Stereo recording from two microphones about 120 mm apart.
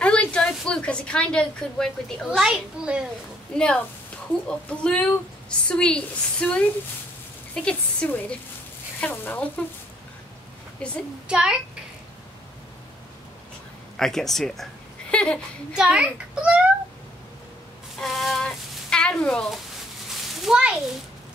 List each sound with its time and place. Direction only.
0.0 s a woman's voice: 10° left (ahead or behind)
2.3 s a child's voice: 5° right (ahead or behind)
3.5 s a woman's voice: 5° left (ahead or behind)
7.6 s a woman's voice: 10° left (ahead or behind)
10.8 s a woman's voice: 10° left (ahead or behind)
11.2 s a child's voice: 5° right (ahead or behind)
13.9 s speech: 5° left (ahead or behind)
15.7 s a child's voice: 5° right (ahead or behind)
17.9 s a child's voice: centre (ahead or behind)